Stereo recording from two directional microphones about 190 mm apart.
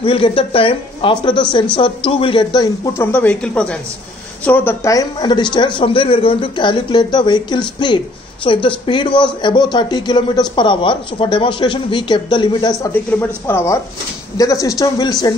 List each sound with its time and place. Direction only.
0.0 s speech: 30° left (ahead or behind)
3.1 s speech: 10° left (ahead or behind); by 12.7 s 25° left (ahead or behind)
12.8 s speech: 10° left (ahead or behind)